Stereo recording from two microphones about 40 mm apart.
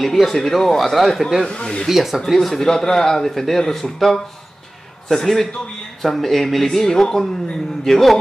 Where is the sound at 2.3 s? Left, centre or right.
Centre.